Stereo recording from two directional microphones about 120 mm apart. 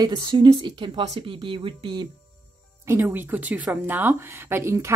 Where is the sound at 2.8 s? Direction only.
20° right (ahead or behind).